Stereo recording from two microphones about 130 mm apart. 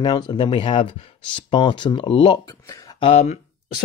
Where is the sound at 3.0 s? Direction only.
50° left (ahead or behind).